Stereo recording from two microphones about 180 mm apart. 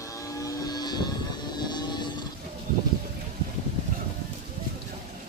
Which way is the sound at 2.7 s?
50° right (ahead or behind).